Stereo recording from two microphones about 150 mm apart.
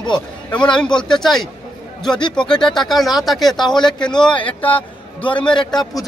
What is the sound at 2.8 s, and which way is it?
Speech, centre (ahead or behind).